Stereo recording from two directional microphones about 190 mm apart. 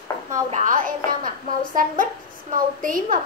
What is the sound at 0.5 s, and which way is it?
A child's voice, 45° right (ahead or behind).